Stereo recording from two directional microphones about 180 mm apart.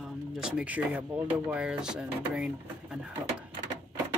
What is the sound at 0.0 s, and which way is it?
Speech, 5° right (ahead or behind).